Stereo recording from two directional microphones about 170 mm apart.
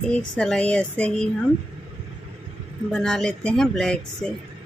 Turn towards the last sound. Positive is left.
turn(degrees=5)  # may be behind; listen again after turning